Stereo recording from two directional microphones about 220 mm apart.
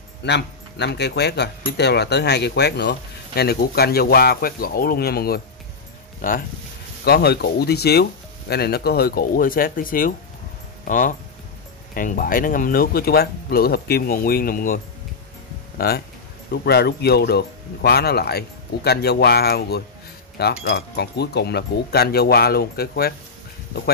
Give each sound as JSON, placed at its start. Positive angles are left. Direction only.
{"t": 0.2, "sound": "speech", "side_deg": 50}
{"t": 7.1, "sound": "speech", "side_deg": 45}
{"t": 15.8, "sound": "speech", "side_deg": 45}